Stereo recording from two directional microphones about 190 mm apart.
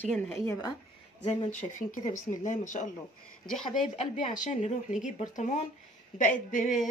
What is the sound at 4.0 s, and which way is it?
A woman's voice, 40° left (ahead or behind).